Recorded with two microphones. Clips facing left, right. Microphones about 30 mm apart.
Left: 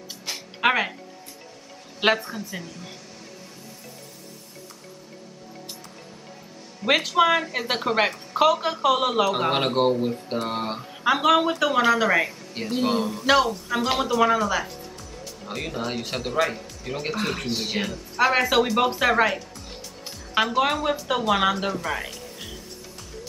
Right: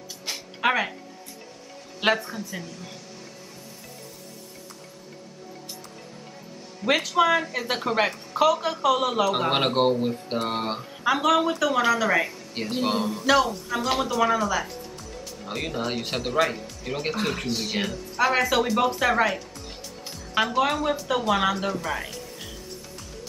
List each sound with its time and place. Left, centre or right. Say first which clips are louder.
0.6 s speech: left 2 dB; centre
2.0 s speech: left 2 dB; centre
6.8 s speech: left 2 dB; centre
9.5 s speech: even; centre
11.1 s speech: left 2 dB; centre
12.5 s speech: left 2 dB; centre
13.2 s speech: left 1 dB; centre
15.4 s speech: right 1 dB; centre
18.2 s speech: left 2 dB; centre